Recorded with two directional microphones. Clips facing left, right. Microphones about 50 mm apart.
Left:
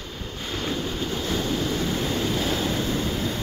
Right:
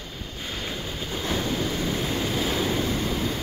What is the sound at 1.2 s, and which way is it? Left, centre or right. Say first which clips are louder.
Waves: right 1 dB; centre.